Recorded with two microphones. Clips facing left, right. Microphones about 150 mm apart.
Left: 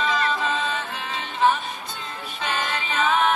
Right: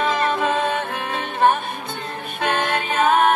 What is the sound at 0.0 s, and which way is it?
Music, 55° right (ahead or behind).